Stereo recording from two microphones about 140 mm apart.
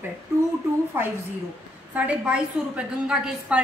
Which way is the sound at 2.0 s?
10° right (ahead or behind).